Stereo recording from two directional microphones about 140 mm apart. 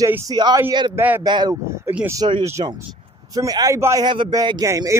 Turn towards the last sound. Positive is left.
turn(degrees=-20)  # may be behind; listen again after turning